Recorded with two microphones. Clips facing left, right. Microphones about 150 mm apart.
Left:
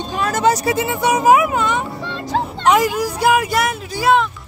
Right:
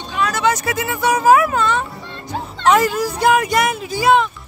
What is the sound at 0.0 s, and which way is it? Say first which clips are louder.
Speech: left 2 dB; 45° left (ahead or behind).